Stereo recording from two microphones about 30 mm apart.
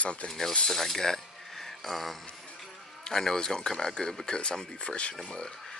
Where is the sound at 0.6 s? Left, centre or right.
Centre.